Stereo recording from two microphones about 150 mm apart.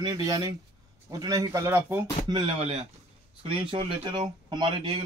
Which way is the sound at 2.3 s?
35° right (ahead or behind).